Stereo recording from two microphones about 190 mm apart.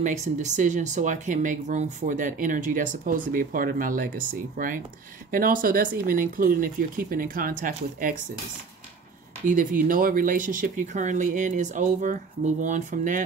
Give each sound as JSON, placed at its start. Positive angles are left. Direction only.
{"t": 0.0, "sound": "speech", "side_deg": -40}
{"t": 9.5, "sound": "speech", "side_deg": -45}